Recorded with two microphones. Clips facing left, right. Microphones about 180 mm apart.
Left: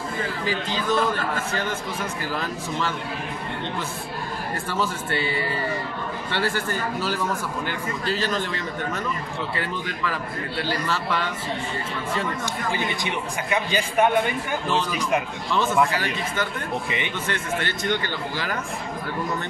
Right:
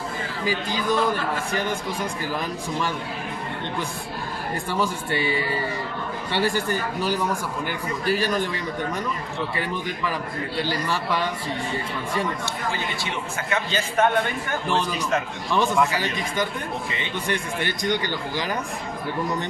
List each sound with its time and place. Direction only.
0.5 s a man's voice: 10° right (ahead or behind)
4.6 s a man's voice: 15° right (ahead or behind)
9.6 s a man's voice: 15° right (ahead or behind)
12.4 s a man's voice: 15° left (ahead or behind)
16.0 s a man's voice: 15° right (ahead or behind)